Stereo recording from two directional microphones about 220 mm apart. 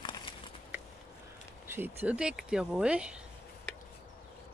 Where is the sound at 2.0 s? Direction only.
5° right (ahead or behind).